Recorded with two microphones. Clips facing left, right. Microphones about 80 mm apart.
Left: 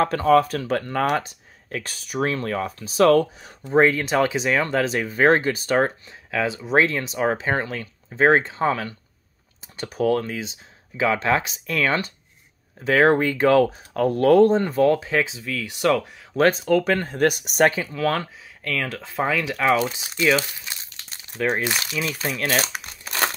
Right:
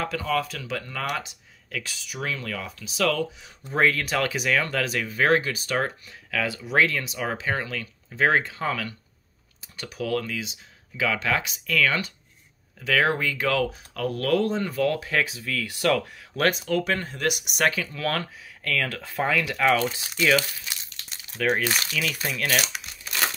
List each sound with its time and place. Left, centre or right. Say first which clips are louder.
0.0 s speech: left 9 dB; left
3.6 s speech: left 5 dB; left
16.4 s speech: left 5 dB; left